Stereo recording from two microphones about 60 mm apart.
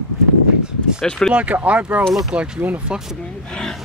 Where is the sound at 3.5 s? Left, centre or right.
Centre.